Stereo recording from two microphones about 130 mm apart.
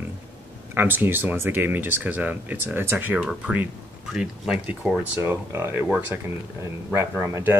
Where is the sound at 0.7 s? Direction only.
15° right (ahead or behind).